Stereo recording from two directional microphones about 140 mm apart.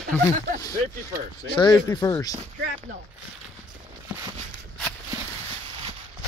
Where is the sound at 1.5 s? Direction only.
30° left (ahead or behind).